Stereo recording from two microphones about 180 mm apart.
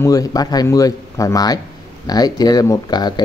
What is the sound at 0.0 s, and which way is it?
Speech, 20° left (ahead or behind).